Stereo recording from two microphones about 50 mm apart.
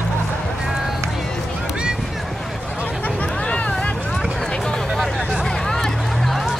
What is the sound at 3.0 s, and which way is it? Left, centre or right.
Vehicle, left.